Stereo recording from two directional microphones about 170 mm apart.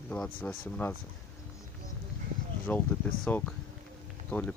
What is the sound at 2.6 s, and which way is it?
Speech, 10° left (ahead or behind).